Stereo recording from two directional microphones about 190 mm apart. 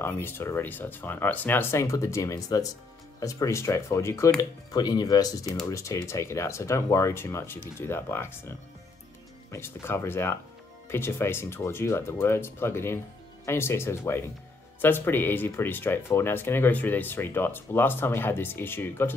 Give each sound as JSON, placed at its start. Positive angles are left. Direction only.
{"t": 0.0, "sound": "speech", "side_deg": 10}